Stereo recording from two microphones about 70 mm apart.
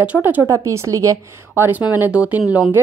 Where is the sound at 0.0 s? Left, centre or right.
Right.